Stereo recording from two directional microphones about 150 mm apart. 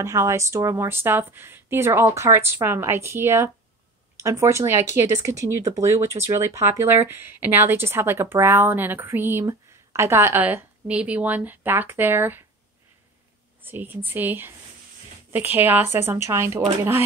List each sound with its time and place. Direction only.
0.0 s a woman's voice: 20° right (ahead or behind)
13.6 s a woman's voice: 15° right (ahead or behind)